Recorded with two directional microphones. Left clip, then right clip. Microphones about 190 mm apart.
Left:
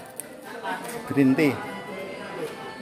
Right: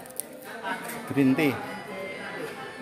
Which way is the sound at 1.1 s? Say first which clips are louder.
Left 3 dB; 10° right (ahead or behind).